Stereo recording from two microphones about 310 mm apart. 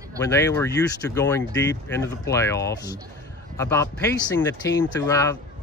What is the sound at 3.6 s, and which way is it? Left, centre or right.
Speech, centre.